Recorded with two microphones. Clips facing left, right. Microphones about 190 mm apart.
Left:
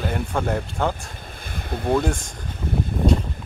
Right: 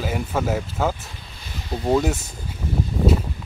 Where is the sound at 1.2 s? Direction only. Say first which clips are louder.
Left 3 dB; 50° left (ahead or behind).